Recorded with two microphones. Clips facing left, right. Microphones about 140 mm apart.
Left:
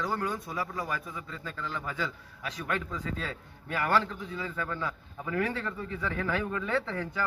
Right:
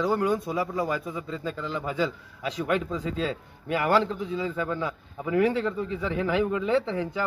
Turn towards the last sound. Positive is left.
turn(degrees=-20)  # may be behind; listen again after turning